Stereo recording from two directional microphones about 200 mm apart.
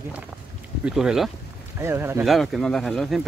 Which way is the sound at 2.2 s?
Centre (ahead or behind).